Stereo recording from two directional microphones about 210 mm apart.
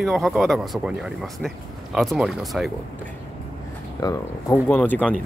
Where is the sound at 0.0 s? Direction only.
Centre (ahead or behind).